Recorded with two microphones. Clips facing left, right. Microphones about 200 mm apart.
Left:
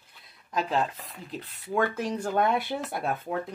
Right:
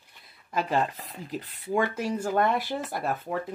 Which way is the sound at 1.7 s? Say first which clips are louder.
Right 1 dB; 10° right (ahead or behind).